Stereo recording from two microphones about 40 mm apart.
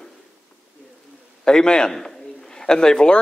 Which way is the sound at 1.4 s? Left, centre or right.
Centre.